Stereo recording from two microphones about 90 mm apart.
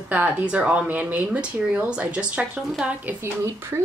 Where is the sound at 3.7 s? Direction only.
30° right (ahead or behind).